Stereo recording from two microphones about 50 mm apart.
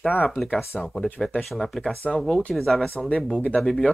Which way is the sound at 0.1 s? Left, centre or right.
Left.